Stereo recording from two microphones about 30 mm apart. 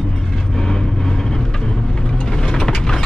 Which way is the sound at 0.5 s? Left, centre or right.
Centre.